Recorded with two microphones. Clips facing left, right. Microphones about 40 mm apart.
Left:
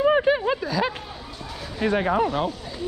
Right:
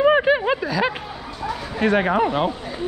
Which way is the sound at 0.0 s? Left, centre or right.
Right.